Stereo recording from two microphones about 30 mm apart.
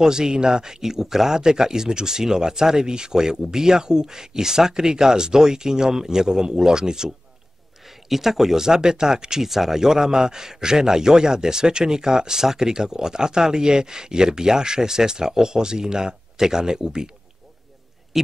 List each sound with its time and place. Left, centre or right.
0.0 s a man's voice: right
7.8 s speech: centre
8.6 s a man's voice: right
9.5 s a man's voice: centre
18.1 s a man's voice: centre